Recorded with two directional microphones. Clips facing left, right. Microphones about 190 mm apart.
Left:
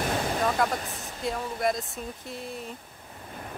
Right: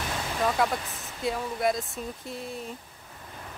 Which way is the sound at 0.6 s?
Centre (ahead or behind).